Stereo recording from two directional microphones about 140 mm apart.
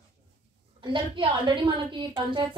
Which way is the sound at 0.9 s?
35° right (ahead or behind).